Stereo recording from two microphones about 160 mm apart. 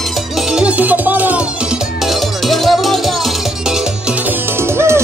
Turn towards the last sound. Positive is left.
turn(degrees=-15)  # may be behind; listen again after turning